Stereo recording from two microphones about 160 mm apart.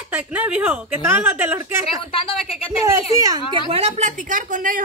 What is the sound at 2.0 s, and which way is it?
Speech, 35° left (ahead or behind).